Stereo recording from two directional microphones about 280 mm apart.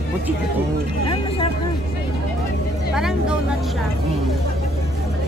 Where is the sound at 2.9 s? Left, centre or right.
Centre.